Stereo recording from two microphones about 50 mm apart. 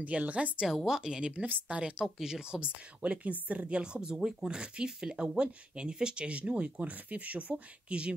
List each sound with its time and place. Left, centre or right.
0.0 s speech: right
0.8 s speech: centre
1.4 s speech: right
1.8 s speech: centre